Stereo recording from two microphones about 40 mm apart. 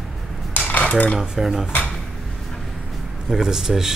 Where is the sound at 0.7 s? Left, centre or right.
Left.